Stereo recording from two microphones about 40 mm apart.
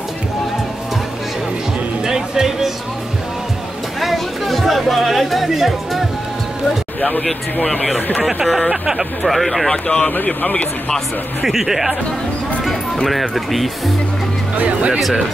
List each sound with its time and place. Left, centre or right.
2.0 s music: centre
4.0 s music: centre
8.2 s speech: centre
9.2 s speech: centre
9.8 s speech: left
10.2 s speech: left
11.4 s speech: centre
15.0 s speech: centre